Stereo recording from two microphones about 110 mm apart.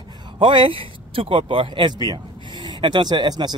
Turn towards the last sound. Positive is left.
turn(degrees=-40)  # may be behind; listen again after turning